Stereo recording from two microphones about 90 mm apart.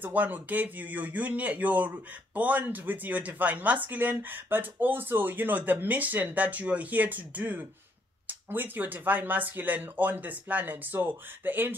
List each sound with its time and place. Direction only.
0.0 s speech: 20° right (ahead or behind)